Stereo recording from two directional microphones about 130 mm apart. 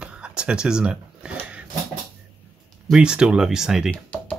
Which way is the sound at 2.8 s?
5° right (ahead or behind).